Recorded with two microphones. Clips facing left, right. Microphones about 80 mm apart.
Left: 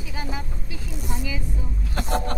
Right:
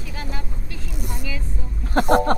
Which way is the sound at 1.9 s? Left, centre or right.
Right.